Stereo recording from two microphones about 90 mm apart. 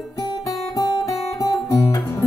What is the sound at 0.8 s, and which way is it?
Guitar, 50° left (ahead or behind).